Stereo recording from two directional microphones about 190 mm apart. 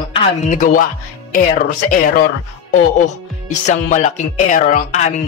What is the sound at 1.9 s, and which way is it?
Speech, 45° left (ahead or behind).